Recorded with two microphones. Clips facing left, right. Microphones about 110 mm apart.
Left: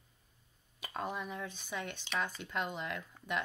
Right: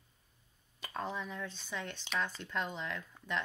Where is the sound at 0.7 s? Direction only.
10° left (ahead or behind).